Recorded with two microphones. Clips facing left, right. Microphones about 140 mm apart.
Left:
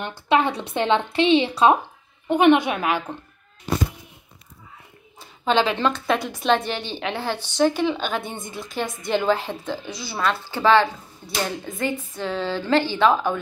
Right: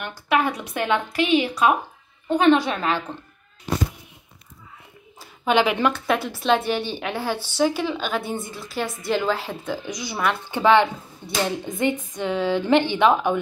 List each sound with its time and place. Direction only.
0.3 s a woman's voice: 25° left (ahead or behind)
5.4 s a woman's voice: 15° right (ahead or behind)